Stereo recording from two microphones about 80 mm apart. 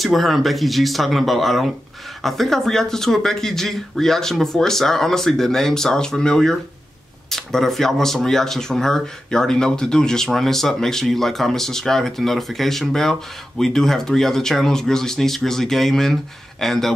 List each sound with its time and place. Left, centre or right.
0.0 s speech: centre